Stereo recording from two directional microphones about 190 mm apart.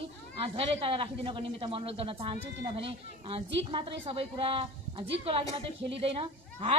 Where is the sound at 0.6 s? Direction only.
25° right (ahead or behind).